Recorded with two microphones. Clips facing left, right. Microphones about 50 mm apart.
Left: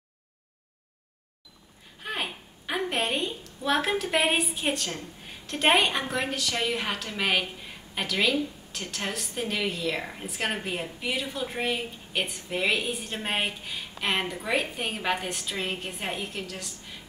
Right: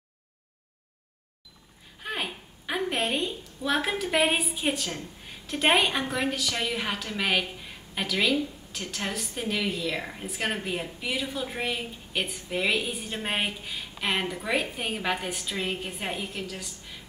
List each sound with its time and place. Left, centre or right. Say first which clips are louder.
2.0 s a woman's voice: even; centre